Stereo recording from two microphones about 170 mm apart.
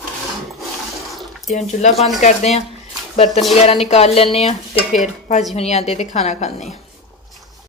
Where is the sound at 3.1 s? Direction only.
35° left (ahead or behind).